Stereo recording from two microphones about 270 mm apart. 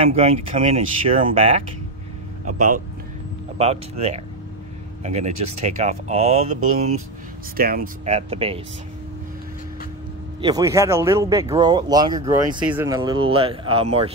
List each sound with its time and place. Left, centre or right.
0.0 s speech: right
5.3 s speech: right
5.8 s speech: right
10.4 s speech: centre